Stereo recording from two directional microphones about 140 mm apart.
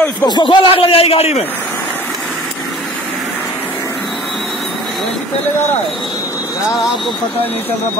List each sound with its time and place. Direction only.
0.2 s speech: 30° left (ahead or behind)